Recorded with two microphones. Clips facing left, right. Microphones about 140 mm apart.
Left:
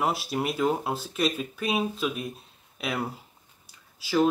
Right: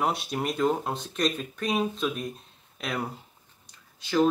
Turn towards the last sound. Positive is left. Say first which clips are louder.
# even
turn(degrees=5)  # may be behind; listen again after turning